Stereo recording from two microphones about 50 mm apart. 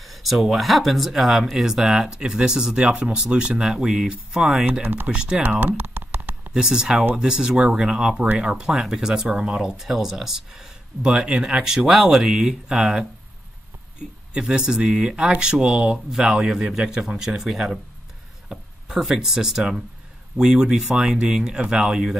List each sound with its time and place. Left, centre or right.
0.0 s speech: centre
5.8 s a sound: right
6.5 s speech: centre
14.3 s speech: right